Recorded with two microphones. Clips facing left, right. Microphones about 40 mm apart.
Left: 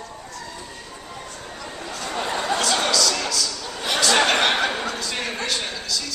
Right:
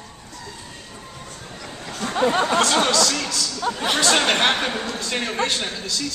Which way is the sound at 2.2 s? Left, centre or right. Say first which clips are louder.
Right 6 dB; right.